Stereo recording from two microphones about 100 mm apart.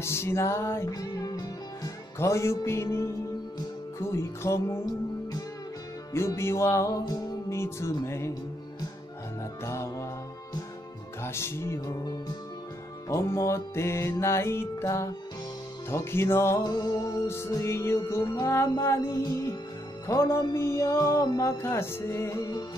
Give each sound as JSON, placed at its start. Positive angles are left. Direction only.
{"t": 0.0, "sound": "music", "side_deg": 25}
{"t": 2.1, "sound": "music", "side_deg": 30}
{"t": 4.1, "sound": "music", "side_deg": 30}
{"t": 6.1, "sound": "music", "side_deg": 25}
{"t": 9.7, "sound": "music", "side_deg": 30}
{"t": 11.2, "sound": "music", "side_deg": 25}
{"t": 13.1, "sound": "music", "side_deg": 30}
{"t": 16.6, "sound": "music", "side_deg": 40}
{"t": 17.5, "sound": "music", "side_deg": 30}